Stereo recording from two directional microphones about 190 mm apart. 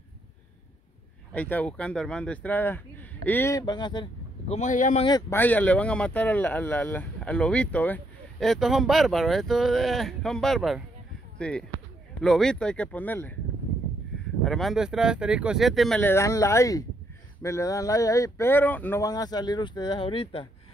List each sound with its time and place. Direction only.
1.3 s speech: 10° left (ahead or behind); by 4.6 s 25° left (ahead or behind)
4.6 s speech: 40° left (ahead or behind)
5.3 s speech: 10° left (ahead or behind)
14.4 s speech: centre (ahead or behind); by 20.4 s 25° left (ahead or behind)